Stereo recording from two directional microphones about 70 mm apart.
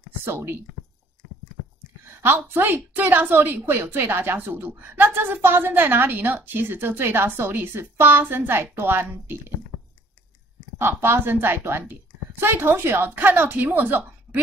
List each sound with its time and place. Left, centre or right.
0.2 s a woman's voice: right
2.0 s a woman's voice: right
10.8 s a woman's voice: right